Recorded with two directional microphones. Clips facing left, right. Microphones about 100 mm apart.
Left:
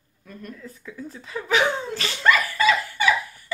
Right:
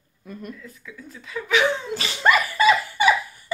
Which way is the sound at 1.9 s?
15° right (ahead or behind).